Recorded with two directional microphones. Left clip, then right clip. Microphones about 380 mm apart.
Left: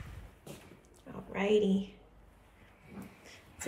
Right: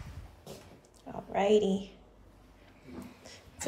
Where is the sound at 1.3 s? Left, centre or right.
Centre.